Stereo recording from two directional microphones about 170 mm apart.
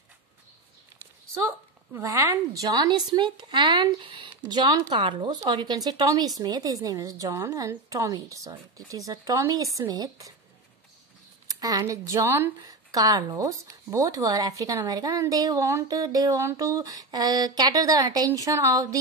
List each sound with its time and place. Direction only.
2.0 s speech: 20° right (ahead or behind)
11.4 s speech: 20° right (ahead or behind)